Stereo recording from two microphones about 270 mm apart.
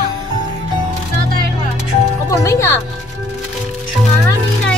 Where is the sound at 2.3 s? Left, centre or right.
Centre.